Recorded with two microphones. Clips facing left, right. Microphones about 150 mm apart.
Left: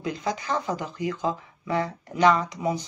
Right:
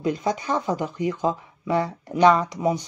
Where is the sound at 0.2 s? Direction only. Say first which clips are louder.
Right 3 dB; 15° right (ahead or behind).